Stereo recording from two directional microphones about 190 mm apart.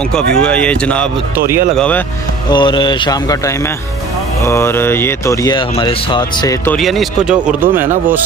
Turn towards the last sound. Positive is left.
turn(degrees=-5)  # may be behind; listen again after turning